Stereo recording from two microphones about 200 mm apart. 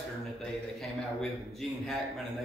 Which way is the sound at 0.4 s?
5° left (ahead or behind).